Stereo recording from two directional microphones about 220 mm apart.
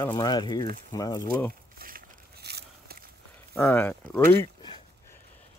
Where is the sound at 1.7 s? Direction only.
40° right (ahead or behind).